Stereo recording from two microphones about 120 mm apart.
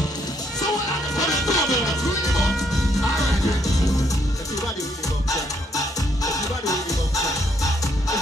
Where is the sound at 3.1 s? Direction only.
30° left (ahead or behind).